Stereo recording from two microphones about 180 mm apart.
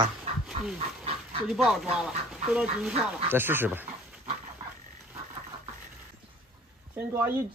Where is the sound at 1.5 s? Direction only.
Centre (ahead or behind).